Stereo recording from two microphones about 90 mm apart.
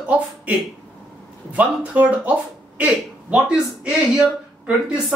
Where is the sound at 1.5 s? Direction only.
15° right (ahead or behind).